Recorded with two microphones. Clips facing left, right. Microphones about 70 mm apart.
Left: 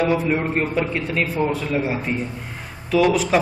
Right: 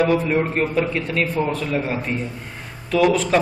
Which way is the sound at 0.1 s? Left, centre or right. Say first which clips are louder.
Right 1 dB; centre.